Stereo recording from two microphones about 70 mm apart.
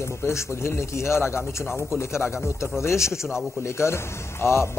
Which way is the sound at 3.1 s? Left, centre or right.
Centre.